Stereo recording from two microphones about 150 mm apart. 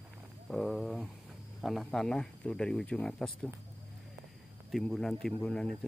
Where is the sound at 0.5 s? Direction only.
Centre (ahead or behind).